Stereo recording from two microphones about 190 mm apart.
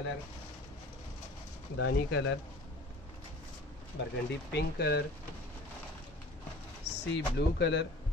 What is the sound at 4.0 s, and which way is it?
Speech, 65° left (ahead or behind).